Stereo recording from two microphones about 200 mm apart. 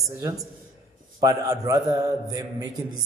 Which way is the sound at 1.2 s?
15° right (ahead or behind).